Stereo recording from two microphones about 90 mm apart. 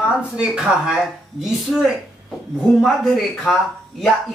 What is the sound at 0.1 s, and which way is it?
A woman's voice, 10° right (ahead or behind).